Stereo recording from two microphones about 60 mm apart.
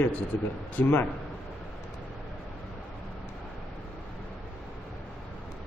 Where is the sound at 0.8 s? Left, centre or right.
Left.